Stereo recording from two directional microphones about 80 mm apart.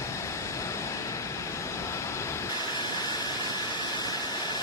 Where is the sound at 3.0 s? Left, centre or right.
Left.